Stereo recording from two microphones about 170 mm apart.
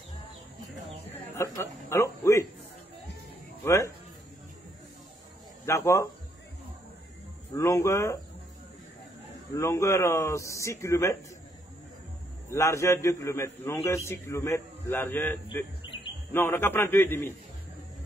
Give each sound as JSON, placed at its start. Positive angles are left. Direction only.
{"t": 1.3, "sound": "a man's voice", "side_deg": 15}
{"t": 3.6, "sound": "speech", "side_deg": 20}
{"t": 5.7, "sound": "a man's voice", "side_deg": 15}
{"t": 7.5, "sound": "a man's voice", "side_deg": 20}
{"t": 9.5, "sound": "a man's voice", "side_deg": 20}
{"t": 12.4, "sound": "a man's voice", "side_deg": 15}
{"t": 15.8, "sound": "a sound", "side_deg": 30}
{"t": 16.3, "sound": "a man's voice", "side_deg": 15}